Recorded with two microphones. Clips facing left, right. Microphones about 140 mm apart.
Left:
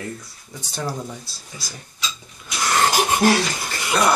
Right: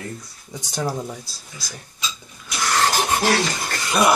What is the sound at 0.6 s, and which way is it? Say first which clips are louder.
Speech: right 3 dB; 15° right (ahead or behind).